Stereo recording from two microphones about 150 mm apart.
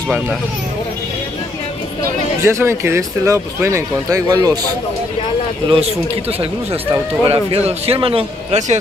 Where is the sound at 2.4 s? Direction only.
15° right (ahead or behind).